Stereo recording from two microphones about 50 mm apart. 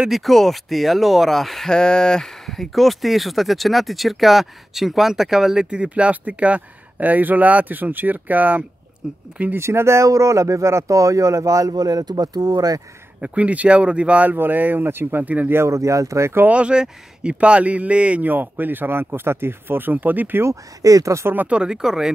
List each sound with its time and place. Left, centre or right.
0.1 s speech: centre; by 8.6 s right
9.0 s speech: centre
9.6 s speech: right
13.2 s speech: right
14.3 s speech: right
15.5 s speech: right
16.4 s speech: right
18.2 s speech: right
21.0 s speech: right
21.5 s speech: centre